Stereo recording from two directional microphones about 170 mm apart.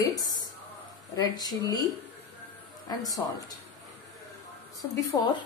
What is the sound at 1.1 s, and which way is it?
Speech, 25° left (ahead or behind).